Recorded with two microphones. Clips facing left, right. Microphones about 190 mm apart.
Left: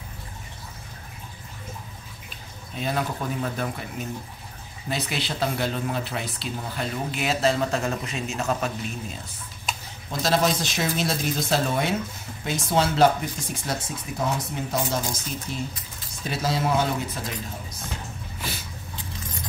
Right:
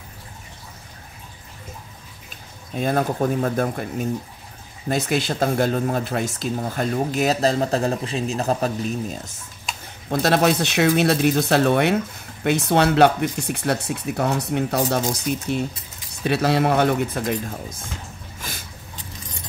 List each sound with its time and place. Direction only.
2.8 s speech: 50° right (ahead or behind)
4.8 s speech: 45° right (ahead or behind)
10.0 s speech: 60° right (ahead or behind)